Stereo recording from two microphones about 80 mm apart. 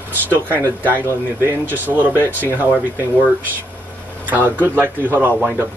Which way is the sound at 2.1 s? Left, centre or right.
Left.